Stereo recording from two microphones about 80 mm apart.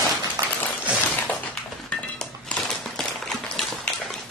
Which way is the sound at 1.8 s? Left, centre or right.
Centre.